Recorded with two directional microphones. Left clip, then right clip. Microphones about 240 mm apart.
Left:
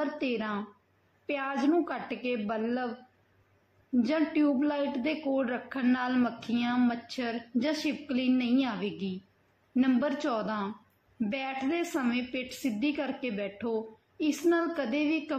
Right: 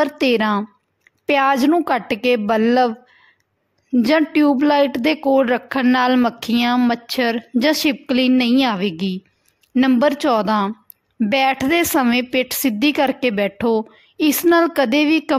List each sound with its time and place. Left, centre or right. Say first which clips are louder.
0.0 s a woman's voice: right 15 dB; right
3.9 s a woman's voice: right 12 dB; right